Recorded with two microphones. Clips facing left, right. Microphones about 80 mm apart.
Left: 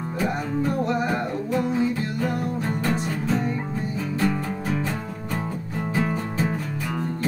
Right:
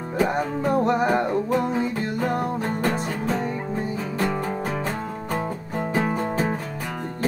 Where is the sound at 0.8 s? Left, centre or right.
Right.